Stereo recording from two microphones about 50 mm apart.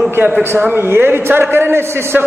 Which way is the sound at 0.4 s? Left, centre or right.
Right.